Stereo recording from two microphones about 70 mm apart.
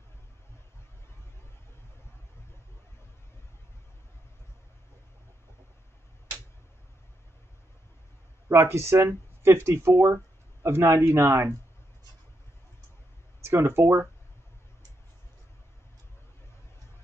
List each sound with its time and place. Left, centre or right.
8.5 s speech: right
13.4 s speech: right